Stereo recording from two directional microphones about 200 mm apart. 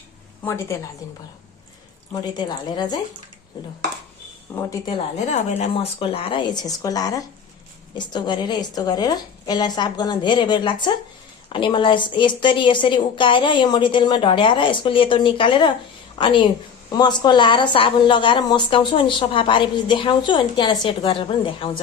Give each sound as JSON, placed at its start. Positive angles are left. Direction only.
{"t": 2.3, "sound": "speech", "side_deg": 20}
{"t": 4.6, "sound": "a woman's voice", "side_deg": 15}
{"t": 5.3, "sound": "speech", "side_deg": 35}